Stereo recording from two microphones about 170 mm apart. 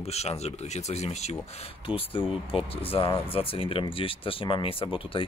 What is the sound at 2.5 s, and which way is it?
Speech, 35° left (ahead or behind).